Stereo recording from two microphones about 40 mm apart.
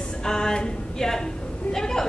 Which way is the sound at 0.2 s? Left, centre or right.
Centre.